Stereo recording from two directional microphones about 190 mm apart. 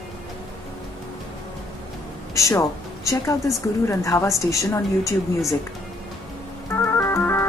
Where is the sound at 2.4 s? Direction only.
15° left (ahead or behind).